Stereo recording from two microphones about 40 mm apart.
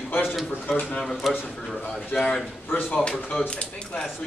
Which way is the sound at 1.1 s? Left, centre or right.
Centre.